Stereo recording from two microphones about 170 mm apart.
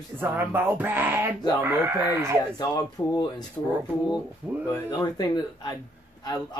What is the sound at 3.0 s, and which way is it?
Speech, 15° left (ahead or behind).